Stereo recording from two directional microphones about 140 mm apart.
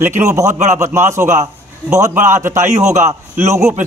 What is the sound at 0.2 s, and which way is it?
A man's voice, 20° right (ahead or behind).